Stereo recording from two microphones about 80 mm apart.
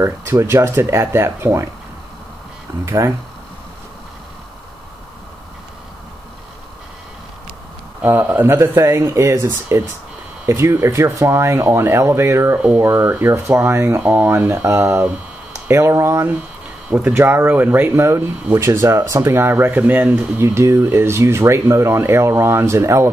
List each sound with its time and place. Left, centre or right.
0.0 s speech: right
2.8 s speech: right
8.0 s speech: right
20.3 s speech: right